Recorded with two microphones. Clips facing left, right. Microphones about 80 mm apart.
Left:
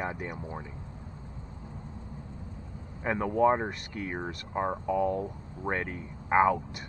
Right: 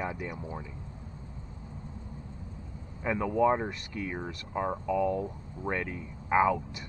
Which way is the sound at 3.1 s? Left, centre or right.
Left.